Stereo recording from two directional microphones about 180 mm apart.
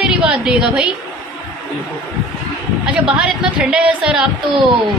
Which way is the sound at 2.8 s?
5° right (ahead or behind).